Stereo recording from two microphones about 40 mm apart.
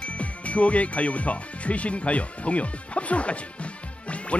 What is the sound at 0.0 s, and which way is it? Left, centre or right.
Speech, left.